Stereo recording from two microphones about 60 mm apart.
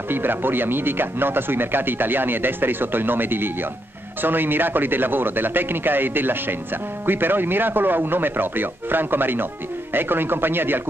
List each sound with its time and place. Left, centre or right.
0.1 s speech: right